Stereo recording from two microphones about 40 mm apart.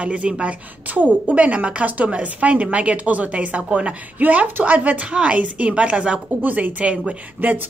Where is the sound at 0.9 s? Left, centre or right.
Right.